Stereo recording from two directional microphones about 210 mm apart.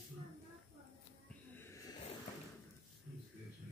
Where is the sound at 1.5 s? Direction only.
10° left (ahead or behind).